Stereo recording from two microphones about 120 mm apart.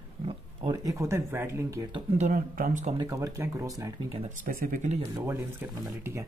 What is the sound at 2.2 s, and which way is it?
Speech, 80° right.